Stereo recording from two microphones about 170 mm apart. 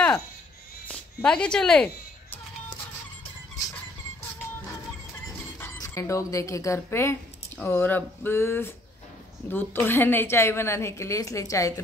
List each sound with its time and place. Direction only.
0.8 s speech: 5° left (ahead or behind)
5.6 s a woman's voice: 15° left (ahead or behind)